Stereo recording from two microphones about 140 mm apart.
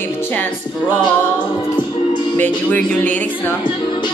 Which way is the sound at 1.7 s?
30° left (ahead or behind).